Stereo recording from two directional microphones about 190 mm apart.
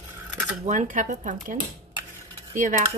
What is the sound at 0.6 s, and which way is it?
Speech, 40° right (ahead or behind).